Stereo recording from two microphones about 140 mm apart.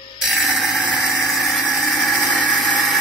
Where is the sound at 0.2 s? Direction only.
5° right (ahead or behind).